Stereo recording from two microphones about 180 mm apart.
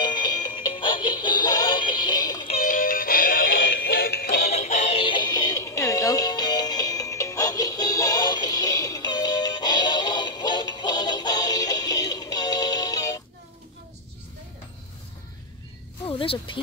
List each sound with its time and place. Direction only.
0.0 s music: 25° left (ahead or behind)
2.6 s music: 50° left (ahead or behind)
3.6 s synthetic singing: 70° left (ahead or behind)
4.6 s synthetic singing: 40° left (ahead or behind); by 13.2 s 20° left (ahead or behind)
16.1 s a sound: 30° left (ahead or behind)